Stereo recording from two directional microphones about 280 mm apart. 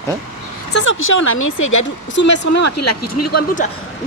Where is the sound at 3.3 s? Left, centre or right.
Left.